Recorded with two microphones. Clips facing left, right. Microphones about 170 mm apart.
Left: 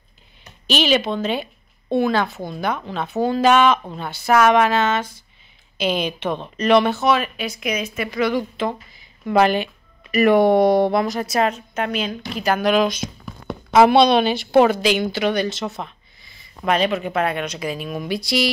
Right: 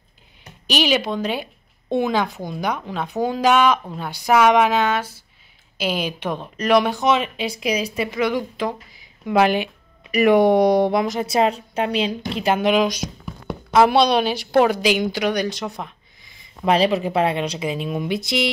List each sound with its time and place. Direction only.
0.7 s a woman's voice: 10° right (ahead or behind); by 8.1 s 30° right (ahead or behind)
8.2 s a woman's voice: 15° right (ahead or behind)
11.2 s a woman's voice: 30° right (ahead or behind); by 15.9 s 10° right (ahead or behind)
16.6 s speech: 30° right (ahead or behind)